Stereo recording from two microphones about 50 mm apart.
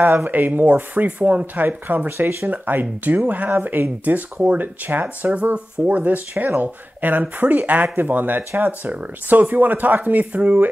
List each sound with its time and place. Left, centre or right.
0.0 s speech: right
2.0 s speech: right
2.5 s speech: right
6.4 s speech: right